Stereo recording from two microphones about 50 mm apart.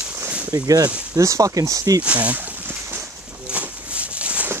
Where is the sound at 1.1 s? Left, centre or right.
Right.